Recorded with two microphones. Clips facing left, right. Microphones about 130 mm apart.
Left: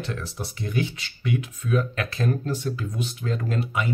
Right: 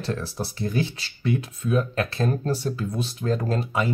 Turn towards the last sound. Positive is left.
turn(degrees=-35)  # may be behind; listen again after turning